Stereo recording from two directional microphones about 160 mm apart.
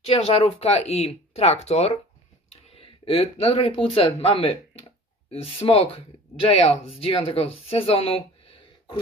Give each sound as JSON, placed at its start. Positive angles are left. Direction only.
{"t": 0.0, "sound": "speech", "side_deg": 40}